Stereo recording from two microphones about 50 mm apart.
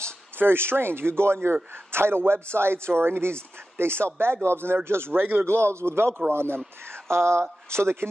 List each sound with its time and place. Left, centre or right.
0.4 s a man's voice: right
7.1 s a man's voice: right